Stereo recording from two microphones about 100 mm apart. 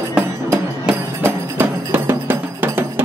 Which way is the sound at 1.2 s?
20° right (ahead or behind).